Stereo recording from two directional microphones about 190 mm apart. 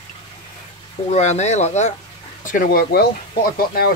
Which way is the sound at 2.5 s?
45° left (ahead or behind).